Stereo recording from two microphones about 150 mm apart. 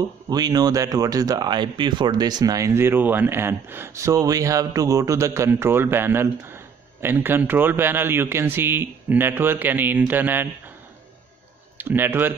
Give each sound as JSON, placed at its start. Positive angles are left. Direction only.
{"t": 0.3, "sound": "speech", "side_deg": -25}
{"t": 11.8, "sound": "speech", "side_deg": -15}